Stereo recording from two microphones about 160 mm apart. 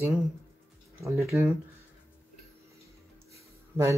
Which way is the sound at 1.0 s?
20° right (ahead or behind).